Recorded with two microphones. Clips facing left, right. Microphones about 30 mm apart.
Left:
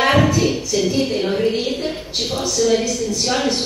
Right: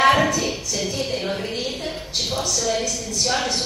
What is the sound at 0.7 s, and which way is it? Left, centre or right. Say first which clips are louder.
Speech: left 9 dB; left.